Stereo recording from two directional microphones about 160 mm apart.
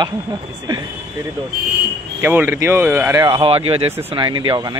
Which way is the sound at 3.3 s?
35° right (ahead or behind).